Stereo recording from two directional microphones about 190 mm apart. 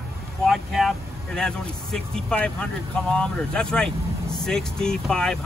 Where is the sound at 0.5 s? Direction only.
Centre (ahead or behind).